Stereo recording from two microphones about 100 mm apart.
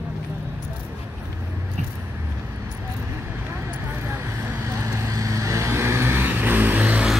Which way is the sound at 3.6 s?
30° right (ahead or behind).